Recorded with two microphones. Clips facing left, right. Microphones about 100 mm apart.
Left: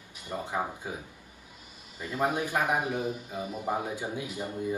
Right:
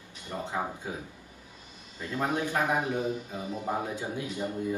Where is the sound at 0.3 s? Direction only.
15° left (ahead or behind).